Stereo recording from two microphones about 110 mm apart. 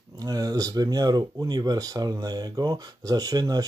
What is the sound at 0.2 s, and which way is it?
Speech, 35° right (ahead or behind).